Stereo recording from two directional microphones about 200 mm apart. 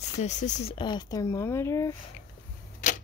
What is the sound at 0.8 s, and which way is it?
Speech, 20° left (ahead or behind).